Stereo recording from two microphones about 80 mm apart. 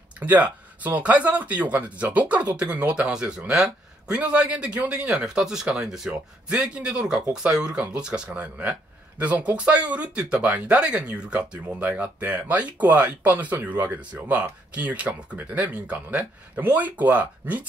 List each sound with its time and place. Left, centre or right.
0.2 s speech: right